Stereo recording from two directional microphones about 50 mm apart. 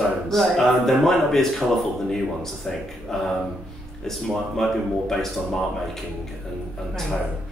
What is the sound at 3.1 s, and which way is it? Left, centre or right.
Speech, centre.